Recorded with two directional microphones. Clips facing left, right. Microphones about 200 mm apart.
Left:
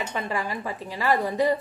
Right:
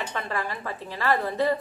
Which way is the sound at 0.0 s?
15° left (ahead or behind).